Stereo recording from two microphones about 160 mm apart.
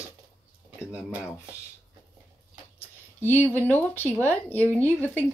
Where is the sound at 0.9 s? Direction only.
10° right (ahead or behind).